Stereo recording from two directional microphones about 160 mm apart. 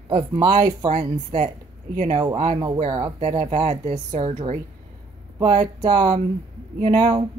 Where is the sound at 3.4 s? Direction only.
40° right (ahead or behind).